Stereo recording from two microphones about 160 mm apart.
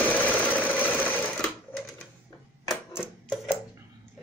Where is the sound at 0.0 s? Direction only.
10° left (ahead or behind).